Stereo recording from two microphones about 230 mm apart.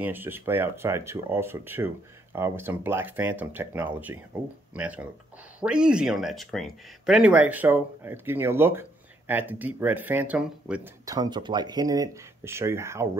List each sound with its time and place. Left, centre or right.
0.0 s speech: centre